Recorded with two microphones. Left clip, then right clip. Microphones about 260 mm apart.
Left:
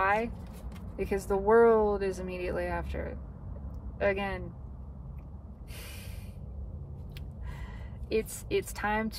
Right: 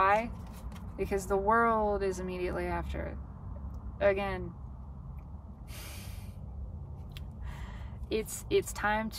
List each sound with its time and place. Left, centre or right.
0.0 s vehicle: centre
0.9 s a woman's voice: centre
8.1 s a woman's voice: centre